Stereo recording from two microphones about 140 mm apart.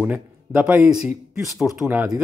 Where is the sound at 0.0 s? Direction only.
10° right (ahead or behind).